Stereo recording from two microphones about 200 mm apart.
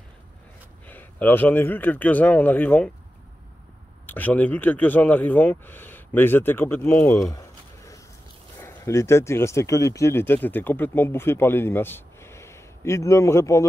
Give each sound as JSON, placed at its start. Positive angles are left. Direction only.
{"t": 0.8, "sound": "speech", "side_deg": 10}
{"t": 4.0, "sound": "speech", "side_deg": 10}
{"t": 7.3, "sound": "a sound", "side_deg": 15}
{"t": 8.5, "sound": "speech", "side_deg": 15}